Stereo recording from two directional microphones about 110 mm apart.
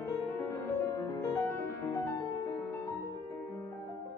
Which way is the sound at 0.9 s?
30° left (ahead or behind).